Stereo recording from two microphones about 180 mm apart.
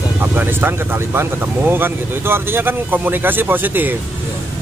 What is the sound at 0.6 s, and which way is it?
Speech, 10° right (ahead or behind).